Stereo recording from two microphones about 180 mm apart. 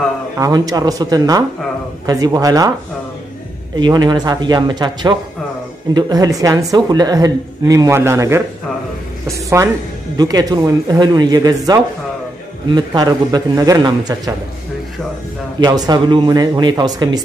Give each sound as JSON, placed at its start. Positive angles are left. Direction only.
{"t": 0.4, "sound": "speech", "side_deg": -20}
{"t": 3.7, "sound": "speech", "side_deg": -25}
{"t": 9.6, "sound": "speech", "side_deg": -15}
{"t": 15.6, "sound": "speech", "side_deg": -20}